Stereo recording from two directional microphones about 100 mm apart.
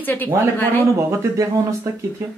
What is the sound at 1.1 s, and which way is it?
Speech, 30° right (ahead or behind).